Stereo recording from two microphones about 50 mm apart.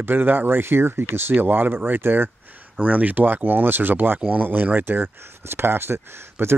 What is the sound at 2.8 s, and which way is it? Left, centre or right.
Speech, right.